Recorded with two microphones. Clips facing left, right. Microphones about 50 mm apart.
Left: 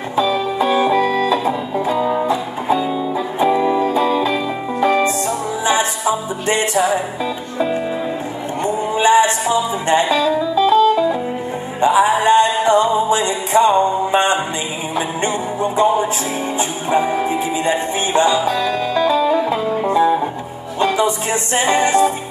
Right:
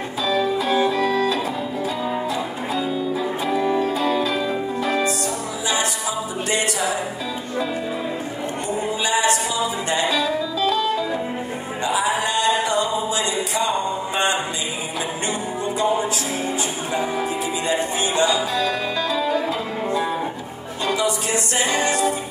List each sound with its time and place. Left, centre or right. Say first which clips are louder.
0.1 s music: left 4 dB; left
8.9 s music: left 8 dB; left
17.6 s music: left 3 dB; left